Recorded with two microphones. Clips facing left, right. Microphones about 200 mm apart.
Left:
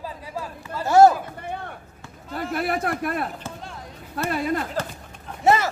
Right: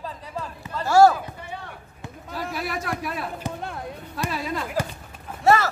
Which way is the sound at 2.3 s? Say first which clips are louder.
Left 4 dB; 55° left (ahead or behind).